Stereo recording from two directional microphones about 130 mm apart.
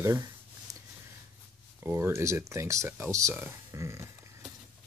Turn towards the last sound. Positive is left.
turn(degrees=-20)  # may be behind; listen again after turning